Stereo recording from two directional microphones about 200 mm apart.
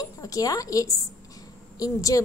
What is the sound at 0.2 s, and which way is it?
A woman's voice, 15° left (ahead or behind).